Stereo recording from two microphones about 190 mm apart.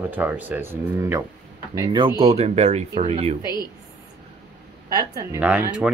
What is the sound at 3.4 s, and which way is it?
Speech, 20° left (ahead or behind).